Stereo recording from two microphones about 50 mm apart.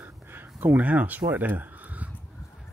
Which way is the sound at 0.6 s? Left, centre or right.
Right.